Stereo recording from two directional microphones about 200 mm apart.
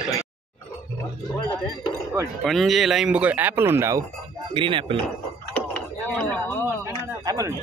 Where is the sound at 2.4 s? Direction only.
Centre (ahead or behind).